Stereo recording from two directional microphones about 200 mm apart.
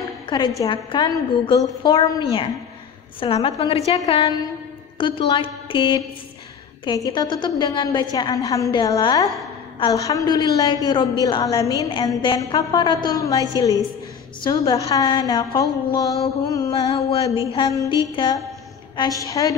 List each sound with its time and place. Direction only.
0.3 s a woman's voice: 25° left (ahead or behind)
15.6 s music: 20° left (ahead or behind)
17.5 s a woman's voice: 25° left (ahead or behind)
18.9 s music: 15° left (ahead or behind)